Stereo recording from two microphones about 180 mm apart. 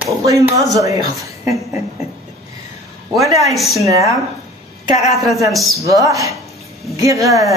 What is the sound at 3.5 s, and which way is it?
Speech, centre (ahead or behind).